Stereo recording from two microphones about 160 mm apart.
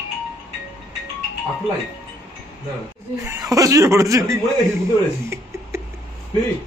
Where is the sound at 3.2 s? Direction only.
20° right (ahead or behind).